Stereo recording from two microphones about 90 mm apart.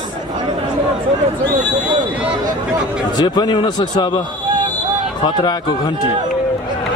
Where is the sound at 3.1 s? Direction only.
55° left (ahead or behind).